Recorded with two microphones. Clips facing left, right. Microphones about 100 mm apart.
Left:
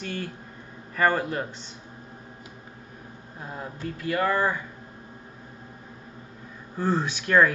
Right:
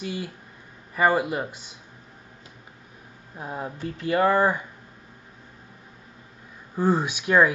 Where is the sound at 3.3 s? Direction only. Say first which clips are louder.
Right 4 dB; 20° right (ahead or behind).